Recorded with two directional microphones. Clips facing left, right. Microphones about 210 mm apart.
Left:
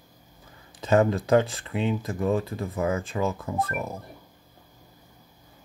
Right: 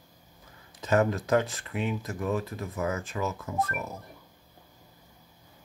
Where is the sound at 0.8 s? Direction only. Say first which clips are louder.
Left 4 dB; 30° left (ahead or behind).